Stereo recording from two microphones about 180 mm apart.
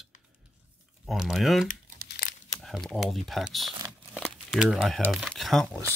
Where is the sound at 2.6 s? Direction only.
5° left (ahead or behind).